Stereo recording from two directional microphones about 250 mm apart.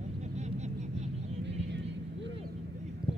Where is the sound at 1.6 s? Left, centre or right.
Right.